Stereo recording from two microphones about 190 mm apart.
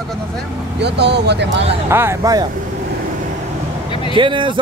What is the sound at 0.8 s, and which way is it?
Speech, 65° right (ahead or behind).